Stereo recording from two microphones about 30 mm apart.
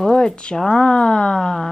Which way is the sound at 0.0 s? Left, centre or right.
Left.